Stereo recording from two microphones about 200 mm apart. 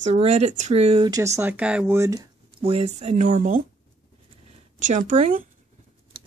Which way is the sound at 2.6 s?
30° right (ahead or behind).